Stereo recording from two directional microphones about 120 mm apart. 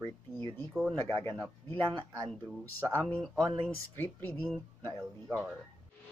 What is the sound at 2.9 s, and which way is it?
Speech, 15° left (ahead or behind).